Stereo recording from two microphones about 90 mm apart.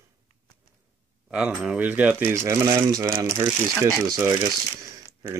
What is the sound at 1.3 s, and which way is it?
Speech, 15° right (ahead or behind).